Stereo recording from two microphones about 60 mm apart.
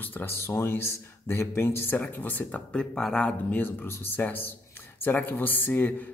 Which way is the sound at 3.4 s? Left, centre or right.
Left.